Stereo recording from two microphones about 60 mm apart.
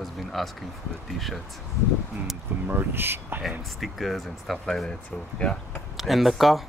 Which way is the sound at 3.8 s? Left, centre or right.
Centre.